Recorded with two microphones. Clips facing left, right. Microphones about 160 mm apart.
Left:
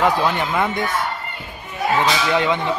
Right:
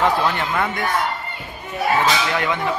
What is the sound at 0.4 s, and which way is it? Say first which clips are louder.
Speech: left 2 dB; 20° left (ahead or behind).